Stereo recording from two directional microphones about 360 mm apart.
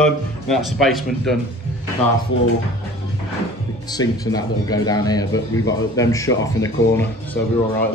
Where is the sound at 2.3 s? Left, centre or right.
Left.